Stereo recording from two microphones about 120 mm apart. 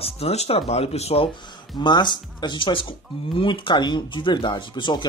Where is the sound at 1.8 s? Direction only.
40° left (ahead or behind).